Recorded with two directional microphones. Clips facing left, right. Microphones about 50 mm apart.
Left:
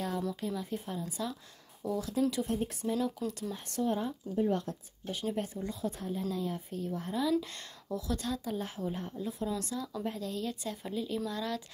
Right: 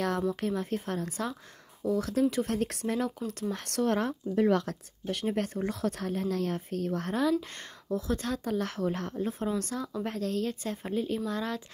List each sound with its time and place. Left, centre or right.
0.4 s a woman's voice: right
2.4 s speech: right
3.2 s speech: right
3.5 s speech: right
5.2 s a woman's voice: right
5.7 s a woman's voice: right
7.3 s speech: right
8.5 s a woman's voice: right
9.1 s a woman's voice: right